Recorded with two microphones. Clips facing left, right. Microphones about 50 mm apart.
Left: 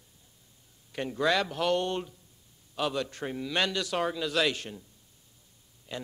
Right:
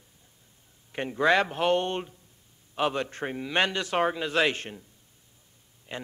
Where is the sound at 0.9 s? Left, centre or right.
Right.